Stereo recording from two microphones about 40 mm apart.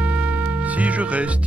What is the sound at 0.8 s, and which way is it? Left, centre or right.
Speech, right.